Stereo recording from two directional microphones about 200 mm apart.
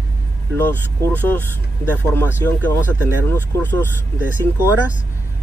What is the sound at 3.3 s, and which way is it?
Speech, 10° left (ahead or behind).